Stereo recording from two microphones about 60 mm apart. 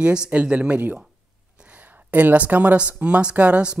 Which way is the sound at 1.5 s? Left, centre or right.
Right.